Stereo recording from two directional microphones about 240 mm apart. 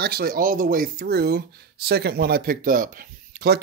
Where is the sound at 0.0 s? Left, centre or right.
Right.